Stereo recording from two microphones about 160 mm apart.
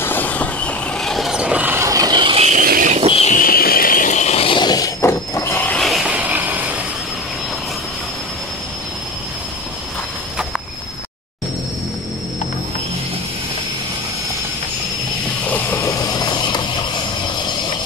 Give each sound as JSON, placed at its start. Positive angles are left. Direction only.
{"t": 0.0, "sound": "vehicle", "side_deg": 10}
{"t": 2.6, "sound": "vehicle", "side_deg": -65}
{"t": 3.1, "sound": "vehicle", "side_deg": 40}
{"t": 3.3, "sound": "vehicle", "side_deg": 65}
{"t": 15.5, "sound": "mechanisms", "side_deg": 15}